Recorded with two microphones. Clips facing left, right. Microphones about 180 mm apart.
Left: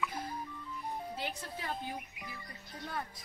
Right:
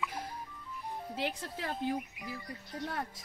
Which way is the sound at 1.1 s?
90° right.